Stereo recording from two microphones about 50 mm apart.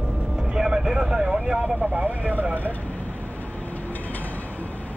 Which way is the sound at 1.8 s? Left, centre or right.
Right.